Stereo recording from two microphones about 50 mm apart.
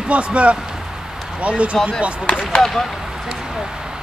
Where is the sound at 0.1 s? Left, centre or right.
Right.